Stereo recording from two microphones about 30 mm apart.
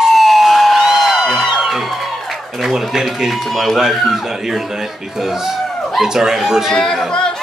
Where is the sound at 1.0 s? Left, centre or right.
Centre.